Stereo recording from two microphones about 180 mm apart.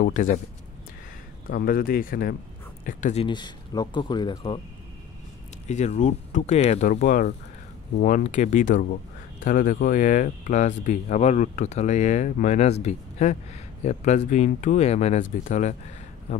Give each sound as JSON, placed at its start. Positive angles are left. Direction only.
{"t": 0.0, "sound": "speech", "side_deg": 45}
{"t": 1.5, "sound": "speech", "side_deg": 55}
{"t": 3.3, "sound": "speech", "side_deg": 25}
{"t": 5.7, "sound": "speech", "side_deg": 40}